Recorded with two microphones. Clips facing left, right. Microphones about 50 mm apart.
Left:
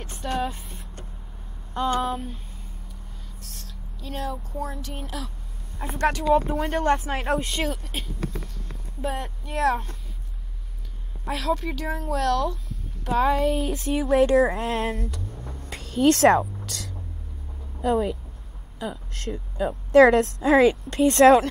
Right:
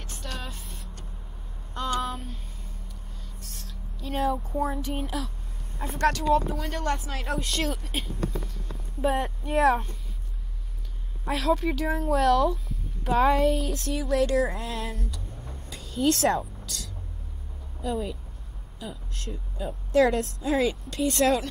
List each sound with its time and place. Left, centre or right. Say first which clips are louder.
0.0 s vehicle: left 10 dB; centre
1.7 s a sound: left 4 dB; centre
2.0 s speech: left 5 dB; centre
5.8 s speech: left 1 dB; centre
6.7 s speech: left 8 dB; left
7.3 s speech: left 3 dB; centre
11.2 s speech: right 1 dB; centre
13.7 s speech: left 4 dB; centre
13.9 s speech: left 6 dB; left
14.6 s a woman's voice: left 7 dB; left
16.6 s hum: left 3 dB; left
17.8 s a woman's voice: left 7 dB; left